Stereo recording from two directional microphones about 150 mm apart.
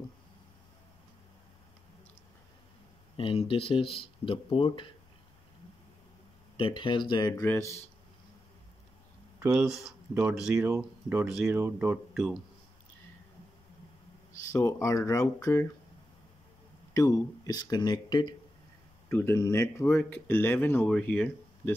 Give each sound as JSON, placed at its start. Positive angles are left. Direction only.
{"t": 3.2, "sound": "speech", "side_deg": 35}
{"t": 6.5, "sound": "speech", "side_deg": 35}
{"t": 7.4, "sound": "speech", "side_deg": 15}
{"t": 9.5, "sound": "speech", "side_deg": -5}
{"t": 12.1, "sound": "speech", "side_deg": 0}
{"t": 14.5, "sound": "speech", "side_deg": 20}
{"t": 16.9, "sound": "speech", "side_deg": 20}
{"t": 19.1, "sound": "speech", "side_deg": 15}